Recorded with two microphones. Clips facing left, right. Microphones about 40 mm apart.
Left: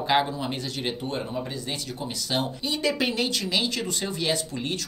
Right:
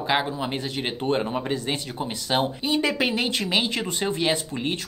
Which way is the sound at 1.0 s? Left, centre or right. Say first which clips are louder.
Right 6 dB; right.